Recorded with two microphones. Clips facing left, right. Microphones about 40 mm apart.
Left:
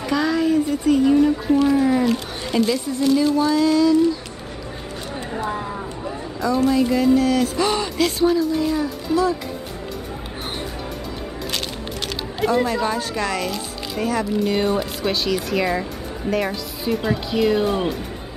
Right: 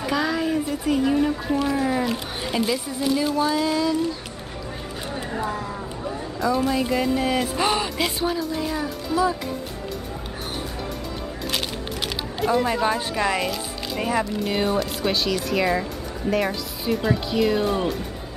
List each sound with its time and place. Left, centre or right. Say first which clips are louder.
0.0 s speech: left 3 dB; centre
5.1 s a sound: left 1 dB; centre
6.4 s speech: left 4 dB; centre
7.2 s a sound: left 4 dB; right
7.7 s speech: left 3 dB; centre
12.6 s speech: even; centre
14.4 s speech: left 3 dB; centre